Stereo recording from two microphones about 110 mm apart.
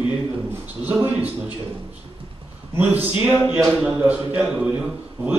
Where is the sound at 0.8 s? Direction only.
15° right (ahead or behind).